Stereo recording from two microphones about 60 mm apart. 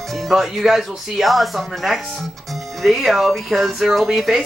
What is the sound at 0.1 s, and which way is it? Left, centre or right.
Speech, centre.